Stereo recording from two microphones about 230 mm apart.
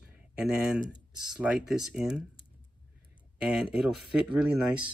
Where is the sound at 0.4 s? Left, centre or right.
Centre.